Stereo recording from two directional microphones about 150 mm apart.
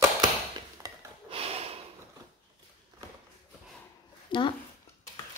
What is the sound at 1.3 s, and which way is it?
Snort, 40° right (ahead or behind).